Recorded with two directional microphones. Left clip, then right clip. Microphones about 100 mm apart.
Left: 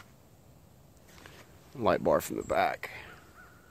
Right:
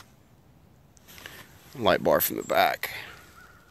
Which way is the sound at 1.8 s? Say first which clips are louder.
Right 4 dB; 35° right (ahead or behind).